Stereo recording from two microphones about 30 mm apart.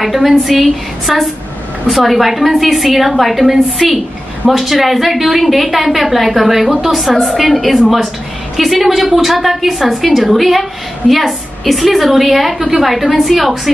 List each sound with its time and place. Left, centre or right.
0.0 s a woman's voice: centre
12.5 s a woman's voice: centre
12.8 s a woman's voice: centre